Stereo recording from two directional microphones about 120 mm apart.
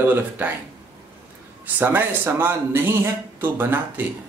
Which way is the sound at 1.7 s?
15° right (ahead or behind).